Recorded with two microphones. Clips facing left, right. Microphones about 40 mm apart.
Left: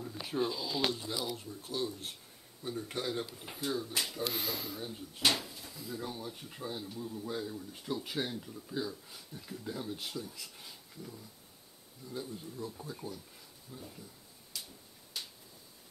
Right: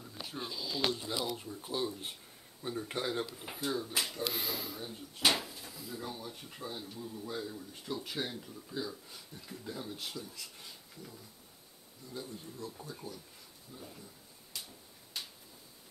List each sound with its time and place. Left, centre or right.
0.3 s speech: centre
1.2 s speech: centre
14.5 s a sound: centre